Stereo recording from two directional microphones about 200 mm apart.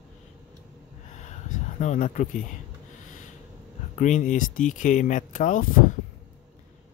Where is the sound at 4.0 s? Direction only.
40° left (ahead or behind).